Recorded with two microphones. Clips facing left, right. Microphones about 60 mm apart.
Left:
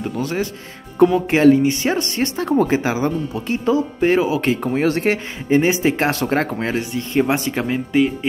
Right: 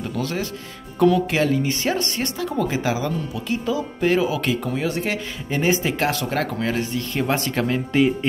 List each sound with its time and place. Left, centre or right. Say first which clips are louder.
0.0 s speech: left 3 dB; left
2.1 s speech: left 6 dB; left
4.8 s speech: left 9 dB; left
5.5 s speech: left 5 dB; left
6.7 s speech: left 3 dB; centre